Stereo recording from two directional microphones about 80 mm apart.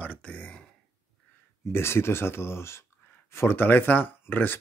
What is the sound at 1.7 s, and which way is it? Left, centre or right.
Speech, left.